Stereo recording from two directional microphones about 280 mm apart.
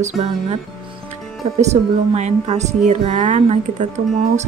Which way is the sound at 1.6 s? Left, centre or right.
Right.